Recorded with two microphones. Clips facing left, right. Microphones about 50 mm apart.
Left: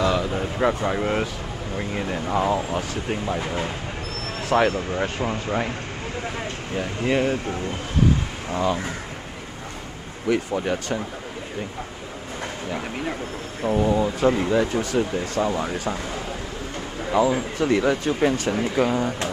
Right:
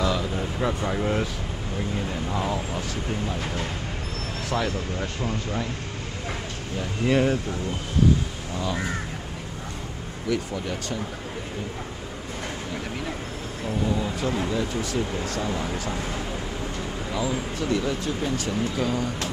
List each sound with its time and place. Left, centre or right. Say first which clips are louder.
0.0 s speech: left 3 dB; left
4.5 s speech: left 8 dB; left
4.7 s speech: left 5 dB; left
7.1 s speech: even; centre
8.5 s speech: left 8 dB; left
10.3 s speech: left 5 dB; left
13.7 s speech: left 6 dB; left
17.1 s speech: left 9 dB; left
18.6 s speech: left 4 dB; left